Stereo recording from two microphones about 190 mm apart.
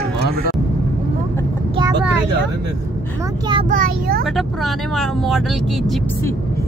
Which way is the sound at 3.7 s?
50° right (ahead or behind).